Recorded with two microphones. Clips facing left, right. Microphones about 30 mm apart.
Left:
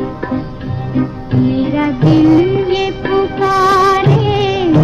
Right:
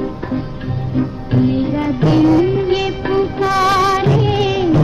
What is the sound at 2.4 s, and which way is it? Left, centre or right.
Music of bollywood, left.